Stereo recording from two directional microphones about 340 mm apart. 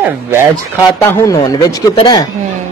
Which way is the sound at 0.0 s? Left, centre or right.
Centre.